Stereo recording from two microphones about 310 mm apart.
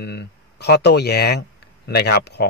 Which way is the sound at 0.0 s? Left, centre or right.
Left.